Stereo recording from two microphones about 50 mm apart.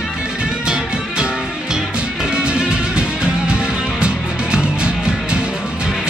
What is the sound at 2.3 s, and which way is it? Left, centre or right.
Music, centre.